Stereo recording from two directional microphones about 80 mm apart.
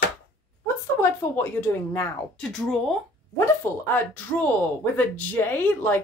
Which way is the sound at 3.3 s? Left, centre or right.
Left.